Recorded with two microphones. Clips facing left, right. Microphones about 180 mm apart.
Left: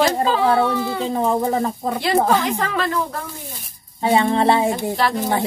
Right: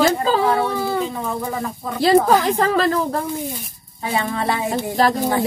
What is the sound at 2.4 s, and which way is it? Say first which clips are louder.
Speech: right 4 dB; 35° right (ahead or behind).